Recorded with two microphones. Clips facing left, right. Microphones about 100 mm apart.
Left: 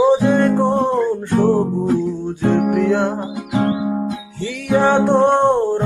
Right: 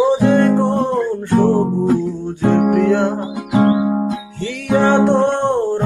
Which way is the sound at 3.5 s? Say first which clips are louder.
Right 5 dB; 80° right.